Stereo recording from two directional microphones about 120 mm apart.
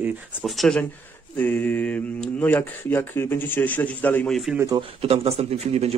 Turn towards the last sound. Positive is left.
turn(degrees=-60)  # may be behind; listen again after turning